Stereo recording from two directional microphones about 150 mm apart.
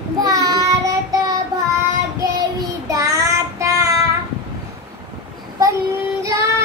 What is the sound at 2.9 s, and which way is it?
Child singing, 20° right (ahead or behind).